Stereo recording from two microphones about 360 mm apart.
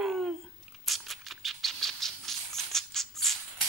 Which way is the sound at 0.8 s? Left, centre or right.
Centre.